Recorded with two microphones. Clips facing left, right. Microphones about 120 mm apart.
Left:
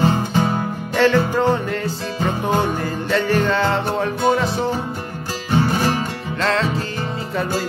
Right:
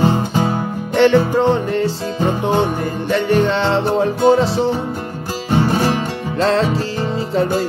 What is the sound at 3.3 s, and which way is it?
Music, 25° right (ahead or behind).